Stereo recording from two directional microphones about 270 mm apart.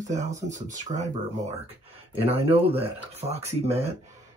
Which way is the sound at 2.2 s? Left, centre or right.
Right.